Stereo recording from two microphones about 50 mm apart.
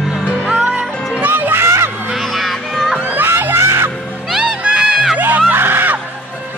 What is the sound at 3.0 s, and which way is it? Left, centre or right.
Music, right.